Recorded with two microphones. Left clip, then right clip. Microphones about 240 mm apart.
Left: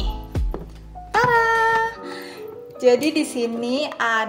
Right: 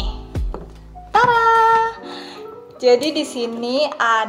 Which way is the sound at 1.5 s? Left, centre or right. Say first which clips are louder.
Right 5 dB; centre.